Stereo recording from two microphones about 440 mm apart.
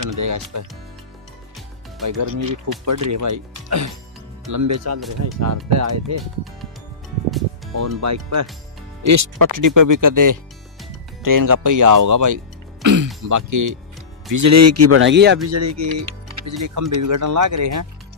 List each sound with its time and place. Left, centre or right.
0.2 s speech: right
2.0 s speech: right
7.2 s music: centre
7.7 s speech: right
12.8 s throat clearing: right
13.3 s speech: right
15.5 s speech: right